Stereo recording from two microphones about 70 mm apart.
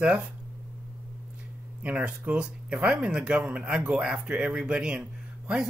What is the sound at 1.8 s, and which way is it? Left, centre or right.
Speech, right.